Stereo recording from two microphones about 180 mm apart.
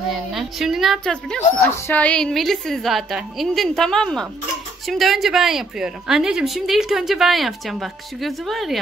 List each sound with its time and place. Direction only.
0.1 s a woman's voice: centre (ahead or behind)